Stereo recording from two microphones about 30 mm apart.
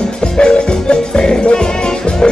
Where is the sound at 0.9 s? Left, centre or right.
Left.